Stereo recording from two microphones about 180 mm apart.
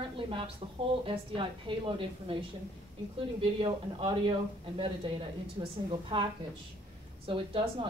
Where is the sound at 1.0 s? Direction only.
30° right (ahead or behind).